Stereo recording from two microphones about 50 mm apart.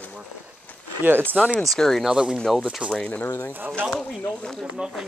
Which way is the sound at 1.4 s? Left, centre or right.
Centre.